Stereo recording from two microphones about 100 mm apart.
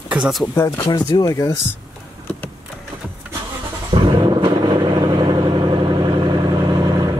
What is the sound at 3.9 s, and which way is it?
Vehicle, 55° right (ahead or behind).